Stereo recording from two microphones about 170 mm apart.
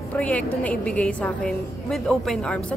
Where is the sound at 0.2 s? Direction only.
10° left (ahead or behind).